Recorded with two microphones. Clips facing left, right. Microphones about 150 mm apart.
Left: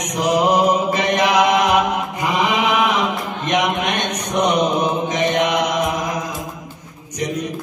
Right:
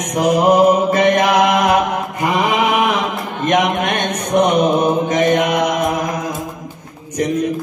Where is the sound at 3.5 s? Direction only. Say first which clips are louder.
Right 4 dB; 50° right (ahead or behind).